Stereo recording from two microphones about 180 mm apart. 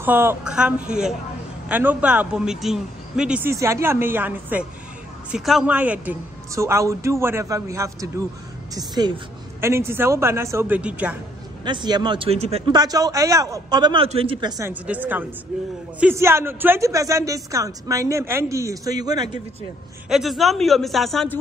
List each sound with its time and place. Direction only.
0.0 s speech: 10° right (ahead or behind)
3.5 s speech: 15° right (ahead or behind)
11.6 s a man's voice: 25° right (ahead or behind)
12.7 s a man's voice: 20° right (ahead or behind)
14.6 s speech: 10° right (ahead or behind)
20.1 s speech: centre (ahead or behind)